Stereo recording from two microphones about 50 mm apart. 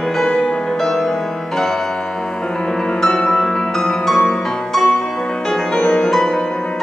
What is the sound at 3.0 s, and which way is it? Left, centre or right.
Music, centre.